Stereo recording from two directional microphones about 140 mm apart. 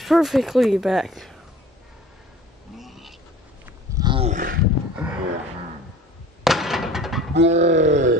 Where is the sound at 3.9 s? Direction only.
35° right (ahead or behind).